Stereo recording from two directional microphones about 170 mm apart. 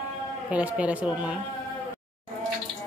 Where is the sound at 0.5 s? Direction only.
5° right (ahead or behind).